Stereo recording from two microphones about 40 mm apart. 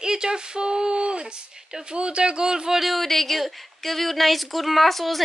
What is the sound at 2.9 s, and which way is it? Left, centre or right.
Speech, centre.